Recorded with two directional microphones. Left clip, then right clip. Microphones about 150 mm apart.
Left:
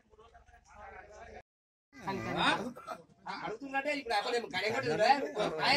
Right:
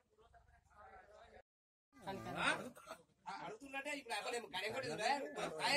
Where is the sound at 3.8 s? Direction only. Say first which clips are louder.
Left 11 dB; 40° left (ahead or behind).